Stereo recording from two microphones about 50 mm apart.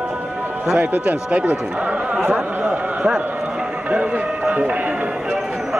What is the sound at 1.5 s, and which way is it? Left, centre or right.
Speech, right.